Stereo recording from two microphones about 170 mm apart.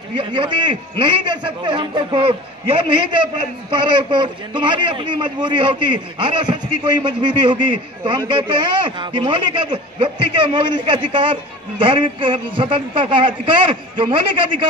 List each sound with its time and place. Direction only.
0.1 s a man's voice: 30° right (ahead or behind)